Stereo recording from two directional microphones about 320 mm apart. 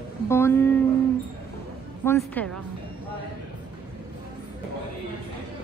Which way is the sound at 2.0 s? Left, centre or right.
Centre.